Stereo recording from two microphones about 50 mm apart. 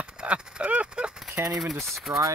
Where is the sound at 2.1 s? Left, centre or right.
Right.